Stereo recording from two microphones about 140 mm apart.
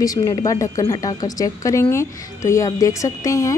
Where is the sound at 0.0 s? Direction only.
25° left (ahead or behind).